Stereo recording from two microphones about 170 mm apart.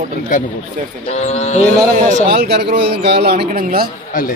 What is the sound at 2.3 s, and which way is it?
Speech, 65° right (ahead or behind).